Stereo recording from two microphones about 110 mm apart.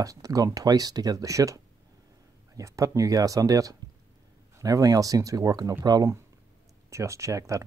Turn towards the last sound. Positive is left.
turn(degrees=-30)  # may be behind; listen again after turning